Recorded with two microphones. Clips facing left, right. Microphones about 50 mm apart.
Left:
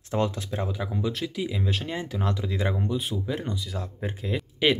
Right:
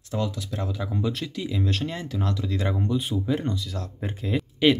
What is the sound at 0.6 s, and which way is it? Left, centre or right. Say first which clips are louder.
Speech: even; centre.